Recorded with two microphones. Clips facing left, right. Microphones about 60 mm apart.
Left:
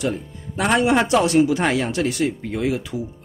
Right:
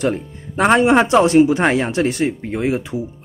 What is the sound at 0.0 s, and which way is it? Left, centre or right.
A man's voice, right.